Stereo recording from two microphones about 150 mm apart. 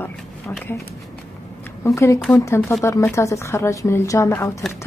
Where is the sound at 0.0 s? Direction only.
10° left (ahead or behind).